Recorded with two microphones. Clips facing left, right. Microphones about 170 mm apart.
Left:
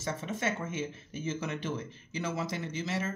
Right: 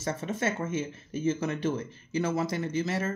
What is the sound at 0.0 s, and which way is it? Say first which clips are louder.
Speech: right 3 dB; 45° right (ahead or behind).